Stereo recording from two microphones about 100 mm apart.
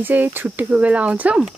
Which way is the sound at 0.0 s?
20° right (ahead or behind).